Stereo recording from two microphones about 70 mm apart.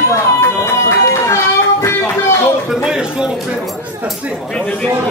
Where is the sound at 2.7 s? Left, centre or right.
Centre.